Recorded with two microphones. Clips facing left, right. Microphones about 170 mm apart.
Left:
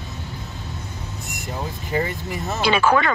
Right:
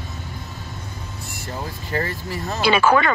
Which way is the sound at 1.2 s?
15° left (ahead or behind).